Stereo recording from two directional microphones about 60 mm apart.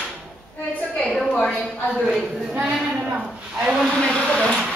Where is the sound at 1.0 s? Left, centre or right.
Centre.